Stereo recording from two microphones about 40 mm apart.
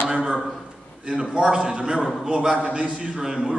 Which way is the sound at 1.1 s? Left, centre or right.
Centre.